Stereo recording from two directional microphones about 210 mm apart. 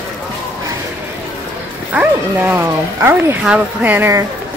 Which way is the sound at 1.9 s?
10° right (ahead or behind).